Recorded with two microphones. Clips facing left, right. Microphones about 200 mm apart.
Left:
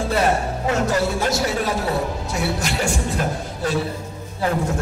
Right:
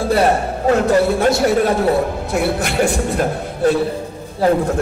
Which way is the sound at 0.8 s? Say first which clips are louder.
Right 7 dB; 55° right (ahead or behind).